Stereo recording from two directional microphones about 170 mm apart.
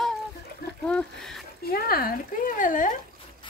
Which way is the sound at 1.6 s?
60° left (ahead or behind).